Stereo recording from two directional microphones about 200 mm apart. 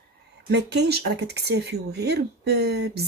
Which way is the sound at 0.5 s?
60° right (ahead or behind).